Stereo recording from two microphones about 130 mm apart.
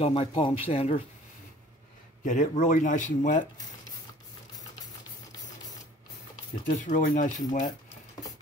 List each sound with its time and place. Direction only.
0.0 s speech: 45° left (ahead or behind)
2.2 s speech: 75° left (ahead or behind)
6.6 s speech: 75° left (ahead or behind)